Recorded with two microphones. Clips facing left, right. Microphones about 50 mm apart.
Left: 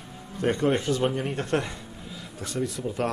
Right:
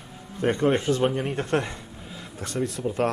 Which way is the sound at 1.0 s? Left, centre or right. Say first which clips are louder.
Right 2 dB; centre.